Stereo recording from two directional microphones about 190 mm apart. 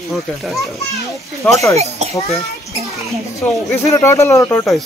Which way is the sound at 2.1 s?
35° left (ahead or behind).